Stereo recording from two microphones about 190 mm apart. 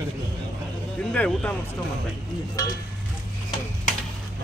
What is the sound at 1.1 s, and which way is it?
Speech, 5° left (ahead or behind).